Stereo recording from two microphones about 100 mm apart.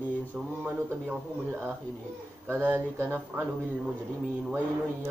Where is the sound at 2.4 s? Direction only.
25° right (ahead or behind).